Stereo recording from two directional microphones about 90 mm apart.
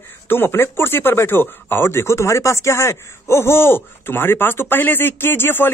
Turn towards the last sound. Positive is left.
turn(degrees=25)  # may be behind; listen again after turning